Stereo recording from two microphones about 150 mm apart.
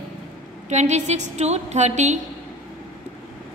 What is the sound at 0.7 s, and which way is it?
A woman's voice, 50° right (ahead or behind).